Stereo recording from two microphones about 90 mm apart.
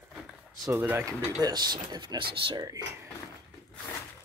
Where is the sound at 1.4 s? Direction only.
50° right (ahead or behind).